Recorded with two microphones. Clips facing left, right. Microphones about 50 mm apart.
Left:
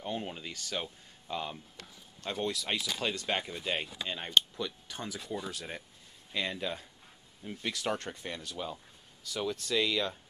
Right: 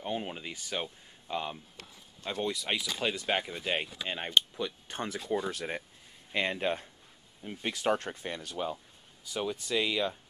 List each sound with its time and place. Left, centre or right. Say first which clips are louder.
0.0 s speech: right 2 dB; centre
4.8 s speech: right 5 dB; right
7.4 s speech: right 4 dB; right
8.4 s speech: right 4 dB; right
9.3 s speech: even; centre